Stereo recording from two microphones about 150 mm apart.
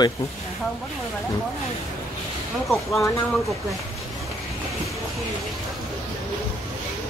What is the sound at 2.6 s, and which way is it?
Speech, centre (ahead or behind).